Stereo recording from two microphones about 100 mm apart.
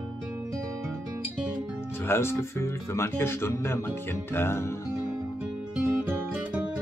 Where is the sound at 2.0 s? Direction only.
25° left (ahead or behind).